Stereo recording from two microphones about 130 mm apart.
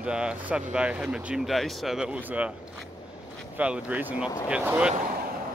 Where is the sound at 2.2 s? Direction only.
10° right (ahead or behind).